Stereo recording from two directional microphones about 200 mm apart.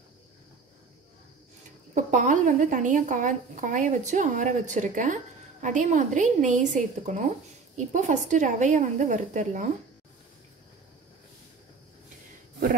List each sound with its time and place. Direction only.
2.0 s a woman's voice: 40° right (ahead or behind)